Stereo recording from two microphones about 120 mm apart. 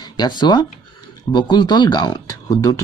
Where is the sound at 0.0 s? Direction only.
35° left (ahead or behind).